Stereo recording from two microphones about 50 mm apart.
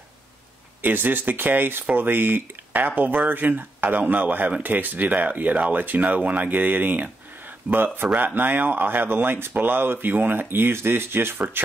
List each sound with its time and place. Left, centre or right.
0.8 s speech: right